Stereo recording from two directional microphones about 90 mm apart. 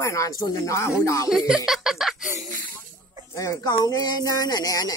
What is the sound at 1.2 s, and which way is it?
Speech, 5° right (ahead or behind).